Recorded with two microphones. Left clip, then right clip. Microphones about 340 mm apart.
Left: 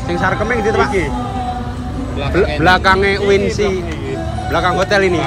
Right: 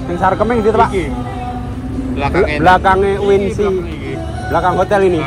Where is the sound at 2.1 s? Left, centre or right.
Centre.